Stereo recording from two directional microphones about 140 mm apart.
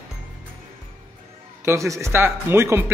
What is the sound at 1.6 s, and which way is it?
Speech, 20° right (ahead or behind).